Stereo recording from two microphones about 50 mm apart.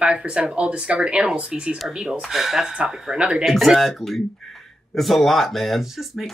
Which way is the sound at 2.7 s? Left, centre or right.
Centre.